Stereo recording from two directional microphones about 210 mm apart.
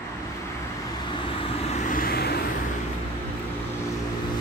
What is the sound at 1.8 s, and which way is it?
Vehicle, 45° left (ahead or behind).